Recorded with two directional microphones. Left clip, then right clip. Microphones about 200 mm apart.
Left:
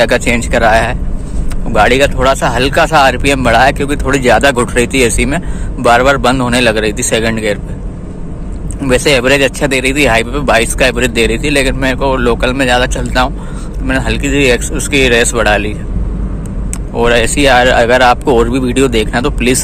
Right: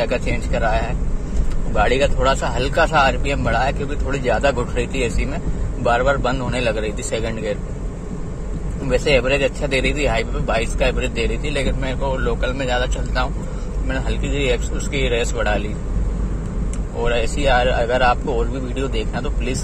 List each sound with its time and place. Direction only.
0.0 s speech: 15° left (ahead or behind)
8.8 s speech: 15° left (ahead or behind)
16.9 s speech: 15° left (ahead or behind)